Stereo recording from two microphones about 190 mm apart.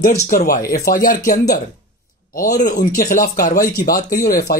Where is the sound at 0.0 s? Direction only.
35° left (ahead or behind).